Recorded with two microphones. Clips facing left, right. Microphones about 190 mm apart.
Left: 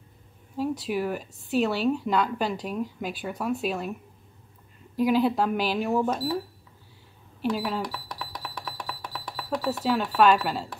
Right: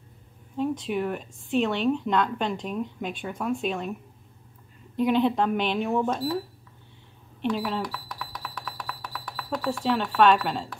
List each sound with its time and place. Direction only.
0.6 s a woman's voice: 5° left (ahead or behind)
4.9 s a woman's voice: 5° left (ahead or behind)
7.4 s a woman's voice: 5° left (ahead or behind)
8.2 s a sound: 20° left (ahead or behind)
9.8 s a woman's voice: 5° left (ahead or behind)